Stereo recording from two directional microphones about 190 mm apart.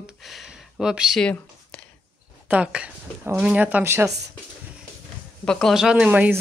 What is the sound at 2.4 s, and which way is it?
A woman's voice, 5° right (ahead or behind).